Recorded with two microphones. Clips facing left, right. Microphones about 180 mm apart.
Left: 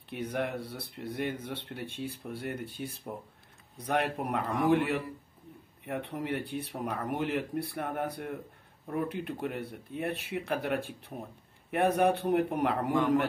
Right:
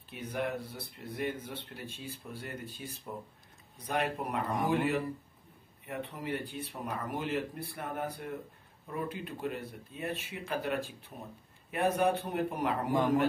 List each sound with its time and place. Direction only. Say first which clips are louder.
0.1 s speech: left 2 dB; 65° left (ahead or behind)